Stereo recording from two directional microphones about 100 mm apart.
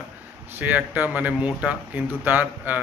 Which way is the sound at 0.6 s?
15° right (ahead or behind).